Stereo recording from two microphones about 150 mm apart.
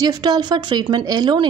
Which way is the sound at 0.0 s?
25° right (ahead or behind).